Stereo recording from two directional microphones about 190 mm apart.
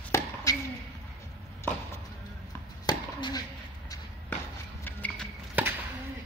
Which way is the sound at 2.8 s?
20° left (ahead or behind).